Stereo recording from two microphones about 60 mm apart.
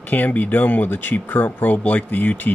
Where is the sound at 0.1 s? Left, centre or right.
Left.